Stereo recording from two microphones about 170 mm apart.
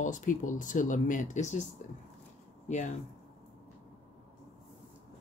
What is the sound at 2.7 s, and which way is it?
Speech, 45° left (ahead or behind).